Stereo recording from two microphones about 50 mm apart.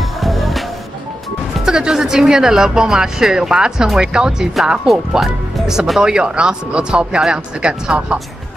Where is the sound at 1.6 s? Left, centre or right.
Centre.